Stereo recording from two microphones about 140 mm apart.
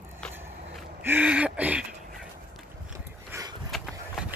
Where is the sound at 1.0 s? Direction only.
10° right (ahead or behind).